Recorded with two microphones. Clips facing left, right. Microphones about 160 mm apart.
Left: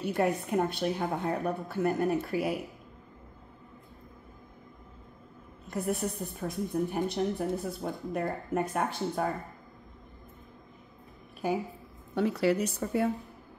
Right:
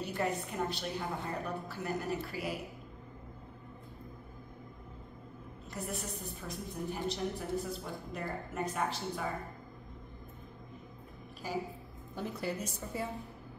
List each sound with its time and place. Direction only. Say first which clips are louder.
0.1 s a woman's voice: left 9 dB; 55° left (ahead or behind)
5.7 s a woman's voice: left 9 dB; 60° left (ahead or behind)
11.4 s a woman's voice: left 8 dB; 60° left (ahead or behind)
12.2 s speech: left 11 dB; 80° left; by 13.1 s 65° left (ahead or behind)